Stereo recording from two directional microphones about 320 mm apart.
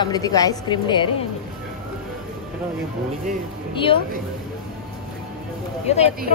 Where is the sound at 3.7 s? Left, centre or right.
Centre.